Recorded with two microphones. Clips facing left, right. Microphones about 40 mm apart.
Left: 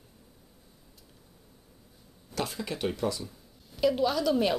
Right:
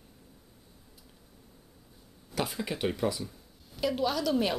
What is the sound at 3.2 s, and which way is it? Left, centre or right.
A woman's voice, centre.